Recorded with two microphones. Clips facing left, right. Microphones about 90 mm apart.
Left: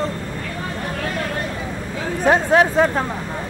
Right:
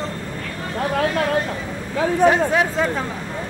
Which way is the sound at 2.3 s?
55° left (ahead or behind).